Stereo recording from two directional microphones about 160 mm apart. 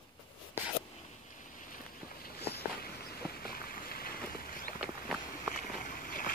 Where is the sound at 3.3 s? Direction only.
70° left (ahead or behind).